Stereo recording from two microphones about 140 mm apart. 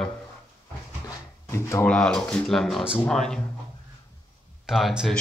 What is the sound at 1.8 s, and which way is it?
Speech, 5° left (ahead or behind).